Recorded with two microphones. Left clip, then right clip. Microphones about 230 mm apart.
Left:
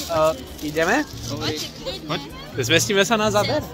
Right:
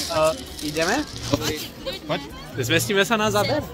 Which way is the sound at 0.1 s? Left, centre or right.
Centre.